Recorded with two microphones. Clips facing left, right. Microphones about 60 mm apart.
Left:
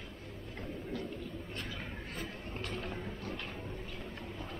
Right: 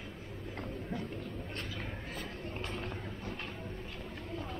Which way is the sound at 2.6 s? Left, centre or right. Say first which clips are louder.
Left 1 dB; right.